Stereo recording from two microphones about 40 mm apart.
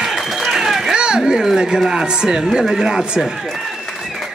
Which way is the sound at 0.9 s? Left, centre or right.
Centre.